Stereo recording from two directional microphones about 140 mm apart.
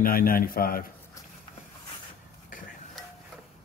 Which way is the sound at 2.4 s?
70° left (ahead or behind).